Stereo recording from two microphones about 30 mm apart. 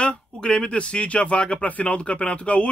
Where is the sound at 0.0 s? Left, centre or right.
Left.